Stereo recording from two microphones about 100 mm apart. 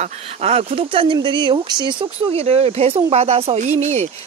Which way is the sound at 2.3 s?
90° right.